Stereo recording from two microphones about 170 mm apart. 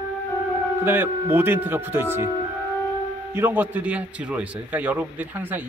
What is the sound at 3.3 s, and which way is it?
A man's voice, 10° right (ahead or behind).